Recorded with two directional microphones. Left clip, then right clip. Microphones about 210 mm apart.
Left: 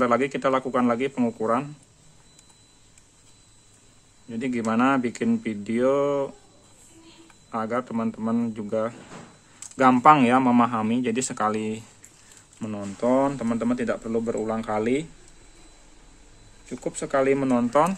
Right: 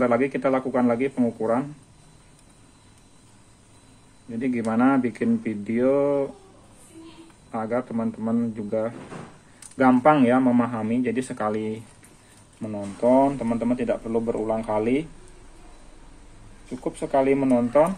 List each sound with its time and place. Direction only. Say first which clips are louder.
0.0 s speech: even; 30° left (ahead or behind)
4.3 s speech: even; 30° left (ahead or behind)
7.5 s speech: even; 30° left (ahead or behind)
17.0 s speech: right 1 dB; 40° left (ahead or behind)
17.5 s speech: right 2 dB; 55° left (ahead or behind)